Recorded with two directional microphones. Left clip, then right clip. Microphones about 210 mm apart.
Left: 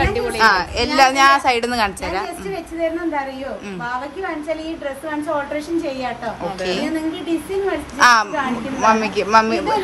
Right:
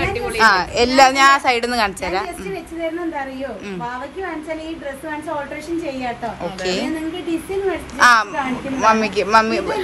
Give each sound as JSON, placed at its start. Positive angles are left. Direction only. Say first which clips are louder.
{"t": 0.0, "sound": "a sound", "louder": "left 2 dB", "side_deg": 50}
{"t": 0.4, "sound": "a woman's voice", "louder": "right 2 dB", "side_deg": 10}
{"t": 6.4, "sound": "a woman's voice", "louder": "even", "side_deg": 10}
{"t": 8.0, "sound": "a woman's voice", "louder": "even", "side_deg": 15}